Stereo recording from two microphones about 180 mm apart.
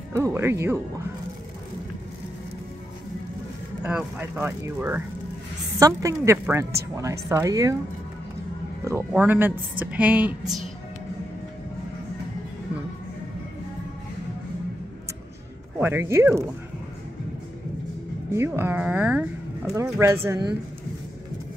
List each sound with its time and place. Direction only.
0.1 s speech: 15° right (ahead or behind)
3.8 s speech: 10° right (ahead or behind)
9.1 s speech: 10° right (ahead or behind)
15.8 s speech: 15° right (ahead or behind)
18.3 s speech: 15° right (ahead or behind)